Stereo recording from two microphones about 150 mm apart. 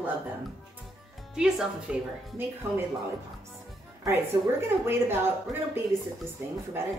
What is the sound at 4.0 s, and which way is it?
A woman's voice, 15° right (ahead or behind).